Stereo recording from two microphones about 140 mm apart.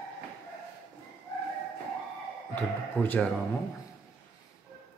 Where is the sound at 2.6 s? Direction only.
10° left (ahead or behind).